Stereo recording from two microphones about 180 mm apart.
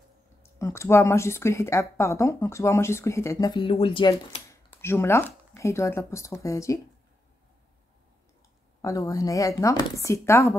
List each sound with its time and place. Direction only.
0.4 s speech: 15° left (ahead or behind)
4.5 s speech: 15° left (ahead or behind)
8.8 s speech: 20° left (ahead or behind)